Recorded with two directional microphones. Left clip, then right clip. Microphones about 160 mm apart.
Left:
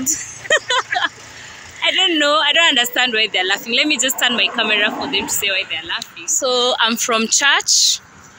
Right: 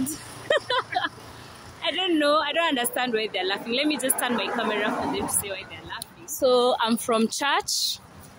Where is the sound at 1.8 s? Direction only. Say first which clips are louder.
Left 9 dB; 35° left (ahead or behind).